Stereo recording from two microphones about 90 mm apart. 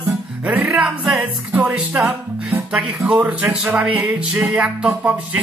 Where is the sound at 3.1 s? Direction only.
15° right (ahead or behind).